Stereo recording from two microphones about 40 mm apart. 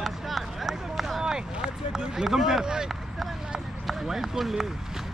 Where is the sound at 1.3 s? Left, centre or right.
Centre.